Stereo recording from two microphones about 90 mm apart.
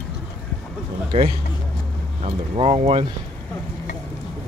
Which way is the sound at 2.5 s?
90° right.